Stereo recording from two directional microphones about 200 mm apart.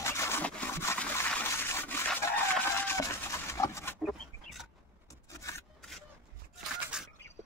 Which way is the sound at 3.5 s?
15° left (ahead or behind).